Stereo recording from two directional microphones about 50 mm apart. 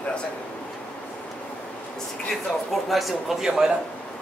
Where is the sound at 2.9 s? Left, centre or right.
Centre.